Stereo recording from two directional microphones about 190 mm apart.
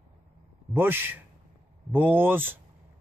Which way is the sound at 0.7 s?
10° right (ahead or behind).